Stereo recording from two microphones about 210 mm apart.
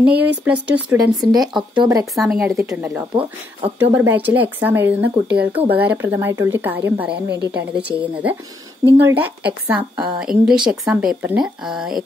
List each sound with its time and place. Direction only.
0.0 s a woman's voice: 10° right (ahead or behind)
0.9 s a woman's voice: 15° right (ahead or behind)
2.1 s a woman's voice: 5° right (ahead or behind)